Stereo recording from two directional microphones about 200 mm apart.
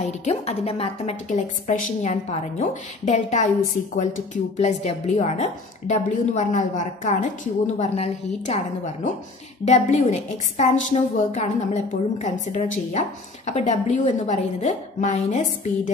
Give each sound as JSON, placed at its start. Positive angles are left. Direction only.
{"t": 0.0, "sound": "a woman's voice", "side_deg": 35}
{"t": 4.6, "sound": "a woman's voice", "side_deg": 35}